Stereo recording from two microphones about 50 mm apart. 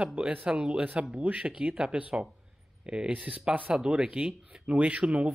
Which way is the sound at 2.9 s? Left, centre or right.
Right.